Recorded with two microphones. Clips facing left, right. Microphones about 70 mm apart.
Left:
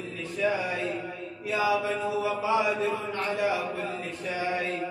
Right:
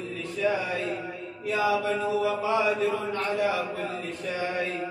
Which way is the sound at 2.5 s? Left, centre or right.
Left.